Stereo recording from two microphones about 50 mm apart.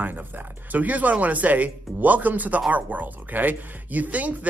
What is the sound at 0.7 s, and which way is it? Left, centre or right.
Speech, right.